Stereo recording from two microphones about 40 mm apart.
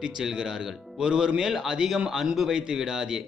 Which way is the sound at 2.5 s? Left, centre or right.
Centre.